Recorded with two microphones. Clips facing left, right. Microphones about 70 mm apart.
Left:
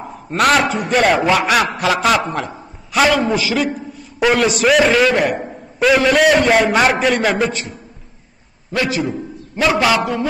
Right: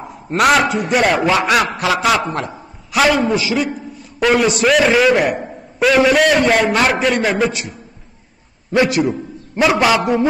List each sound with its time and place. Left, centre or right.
0.3 s a man's voice: centre
8.7 s a man's voice: right